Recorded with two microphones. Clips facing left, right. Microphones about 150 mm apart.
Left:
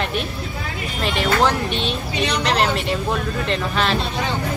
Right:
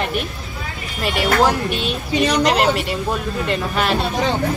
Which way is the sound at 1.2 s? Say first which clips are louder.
Right 2 dB; 5° right (ahead or behind).